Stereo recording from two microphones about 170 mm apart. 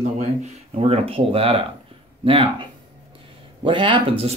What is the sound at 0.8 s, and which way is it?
Speech, 35° right (ahead or behind).